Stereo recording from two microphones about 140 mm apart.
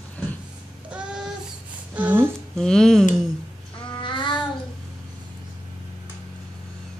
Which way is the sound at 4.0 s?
35° left (ahead or behind).